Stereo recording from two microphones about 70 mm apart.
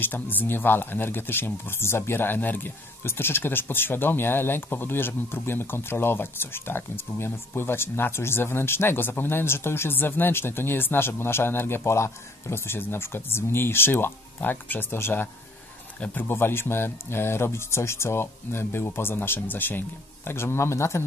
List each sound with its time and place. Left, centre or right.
0.0 s speech: left